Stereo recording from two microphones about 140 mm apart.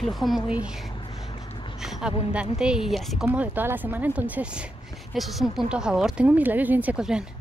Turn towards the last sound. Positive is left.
turn(degrees=-5)  # may be behind; listen again after turning